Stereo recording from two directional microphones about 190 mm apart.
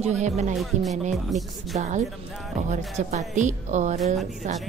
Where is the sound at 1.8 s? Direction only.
40° right (ahead or behind).